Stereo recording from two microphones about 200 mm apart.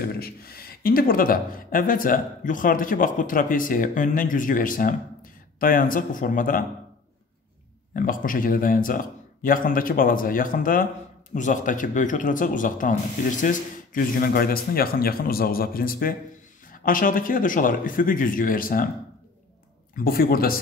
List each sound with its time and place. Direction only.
0.0 s speech: 50° left (ahead or behind)
7.9 s speech: 45° left (ahead or behind)
20.0 s speech: 50° left (ahead or behind)